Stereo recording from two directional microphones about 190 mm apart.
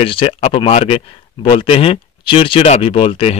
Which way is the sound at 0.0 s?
30° left (ahead or behind).